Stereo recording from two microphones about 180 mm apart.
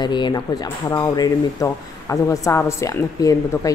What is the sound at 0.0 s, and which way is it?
Speech, 25° left (ahead or behind).